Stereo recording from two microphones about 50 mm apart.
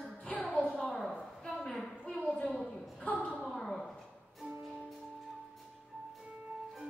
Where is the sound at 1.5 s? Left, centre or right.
Centre.